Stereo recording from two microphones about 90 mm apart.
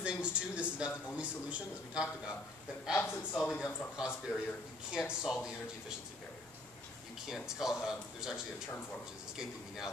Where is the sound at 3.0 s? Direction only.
25° left (ahead or behind).